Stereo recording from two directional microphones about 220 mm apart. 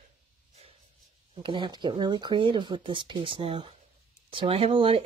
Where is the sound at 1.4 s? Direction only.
20° right (ahead or behind).